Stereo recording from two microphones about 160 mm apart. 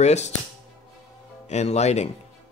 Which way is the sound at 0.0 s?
45° left (ahead or behind).